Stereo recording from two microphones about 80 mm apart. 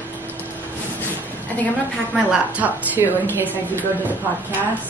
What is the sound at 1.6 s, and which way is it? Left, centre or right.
Speech, centre.